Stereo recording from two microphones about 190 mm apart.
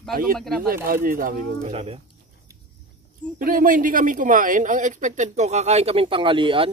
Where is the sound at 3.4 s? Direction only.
45° right (ahead or behind).